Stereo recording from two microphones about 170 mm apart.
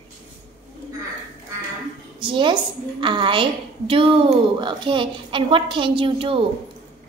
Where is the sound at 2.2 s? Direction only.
30° right (ahead or behind).